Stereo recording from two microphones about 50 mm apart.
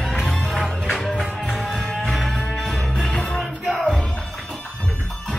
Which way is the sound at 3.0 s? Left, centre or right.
Left.